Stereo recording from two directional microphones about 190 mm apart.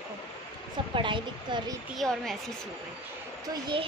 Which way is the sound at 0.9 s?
25° right (ahead or behind).